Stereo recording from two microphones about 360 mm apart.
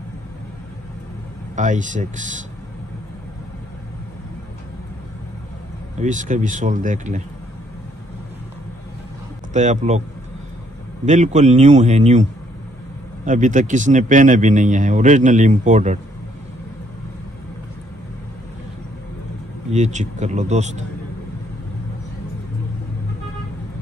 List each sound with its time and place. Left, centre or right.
1.5 s speech: right
5.9 s speech: right
9.5 s speech: centre
11.1 s speech: centre
19.7 s speech: centre